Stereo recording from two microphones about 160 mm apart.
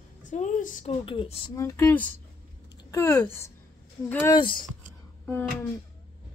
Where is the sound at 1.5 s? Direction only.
15° left (ahead or behind).